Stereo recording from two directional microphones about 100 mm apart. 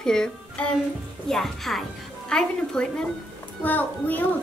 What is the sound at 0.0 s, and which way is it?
A woman's voice, 5° left (ahead or behind).